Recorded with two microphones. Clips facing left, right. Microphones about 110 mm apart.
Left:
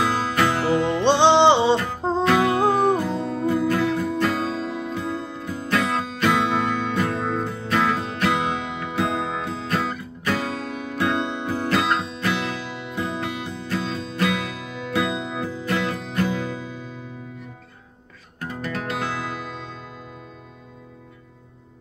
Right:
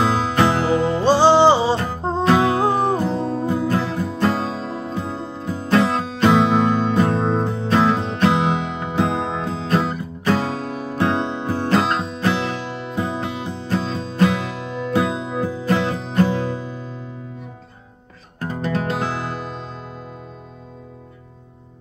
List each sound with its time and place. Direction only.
0.0 s music: 20° right (ahead or behind)
1.2 s music: 5° right (ahead or behind)
2.2 s music: 25° right (ahead or behind)
18.4 s music: 25° right (ahead or behind)